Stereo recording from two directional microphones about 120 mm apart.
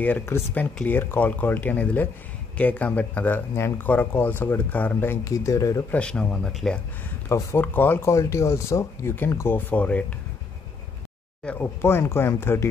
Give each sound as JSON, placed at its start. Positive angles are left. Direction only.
{"t": 0.0, "sound": "speech", "side_deg": 15}
{"t": 5.2, "sound": "speech", "side_deg": 25}
{"t": 5.9, "sound": "speech", "side_deg": 10}
{"t": 7.2, "sound": "speech", "side_deg": 20}
{"t": 11.4, "sound": "speech", "side_deg": 15}